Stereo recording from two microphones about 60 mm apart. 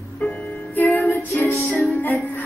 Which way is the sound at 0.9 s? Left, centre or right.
Left.